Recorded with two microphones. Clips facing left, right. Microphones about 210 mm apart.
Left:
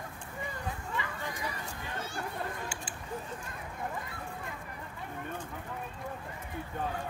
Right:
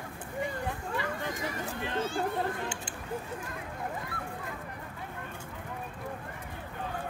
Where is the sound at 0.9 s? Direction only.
45° right (ahead or behind).